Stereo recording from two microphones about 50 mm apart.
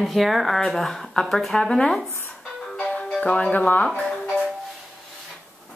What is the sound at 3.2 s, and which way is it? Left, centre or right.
Speech, left.